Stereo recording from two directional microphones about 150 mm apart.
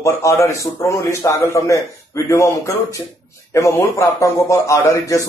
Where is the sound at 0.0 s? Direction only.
20° left (ahead or behind).